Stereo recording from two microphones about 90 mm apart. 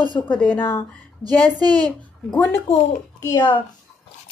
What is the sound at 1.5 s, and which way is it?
Speech, 50° right (ahead or behind).